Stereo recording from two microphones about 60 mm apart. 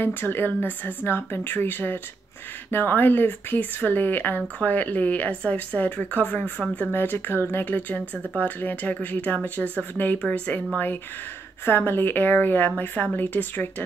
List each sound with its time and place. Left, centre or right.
0.0 s a woman's voice: left
6.9 s a woman's voice: left; by 10.6 s centre
11.6 s a woman's voice: left